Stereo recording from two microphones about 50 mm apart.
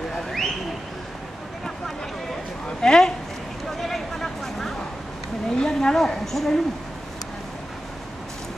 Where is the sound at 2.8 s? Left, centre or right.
Centre.